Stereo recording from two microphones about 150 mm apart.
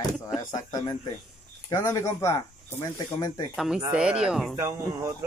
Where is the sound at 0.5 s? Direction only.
25° left (ahead or behind).